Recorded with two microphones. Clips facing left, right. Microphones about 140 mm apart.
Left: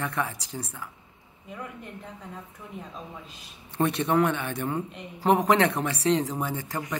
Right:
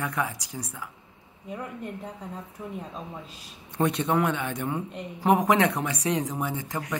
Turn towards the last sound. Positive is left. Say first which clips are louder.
# even
turn(degrees=-15)  # may be behind; listen again after turning